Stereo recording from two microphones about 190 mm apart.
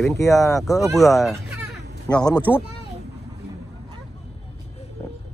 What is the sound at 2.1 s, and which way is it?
Speech, 20° left (ahead or behind).